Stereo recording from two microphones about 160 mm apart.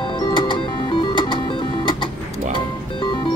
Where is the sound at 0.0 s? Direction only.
30° left (ahead or behind).